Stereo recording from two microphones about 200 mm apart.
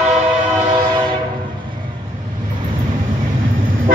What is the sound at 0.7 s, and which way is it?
Train, 20° right (ahead or behind).